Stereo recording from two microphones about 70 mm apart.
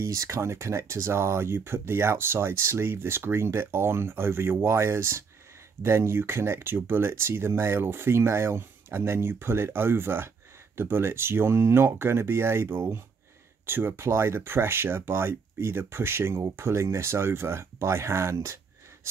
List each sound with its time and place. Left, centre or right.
0.0 s speech: right